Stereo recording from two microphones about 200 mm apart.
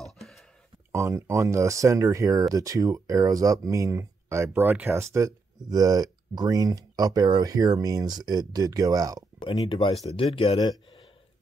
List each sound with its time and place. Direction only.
0.0 s a sound: centre (ahead or behind)
0.9 s speech: 15° right (ahead or behind)
9.4 s speech: 25° left (ahead or behind)